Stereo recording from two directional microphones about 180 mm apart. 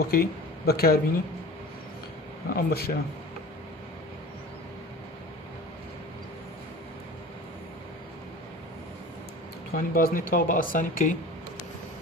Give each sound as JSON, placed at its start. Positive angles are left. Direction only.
{"t": 0.0, "sound": "speech", "side_deg": 55}
{"t": 2.5, "sound": "speech", "side_deg": 55}
{"t": 9.8, "sound": "speech", "side_deg": 55}